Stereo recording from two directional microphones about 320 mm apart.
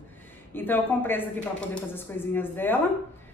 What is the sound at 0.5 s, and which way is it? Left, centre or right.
A woman's voice, centre.